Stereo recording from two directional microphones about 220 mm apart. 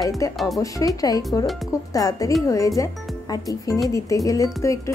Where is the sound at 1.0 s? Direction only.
15° left (ahead or behind).